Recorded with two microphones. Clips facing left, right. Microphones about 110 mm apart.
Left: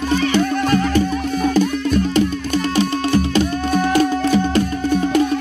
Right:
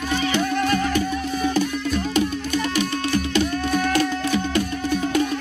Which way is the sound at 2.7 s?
30° left (ahead or behind).